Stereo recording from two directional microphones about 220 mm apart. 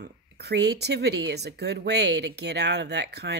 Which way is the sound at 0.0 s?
50° right (ahead or behind).